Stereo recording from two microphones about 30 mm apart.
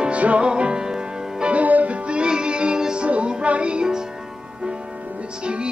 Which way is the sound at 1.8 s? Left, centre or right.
Right.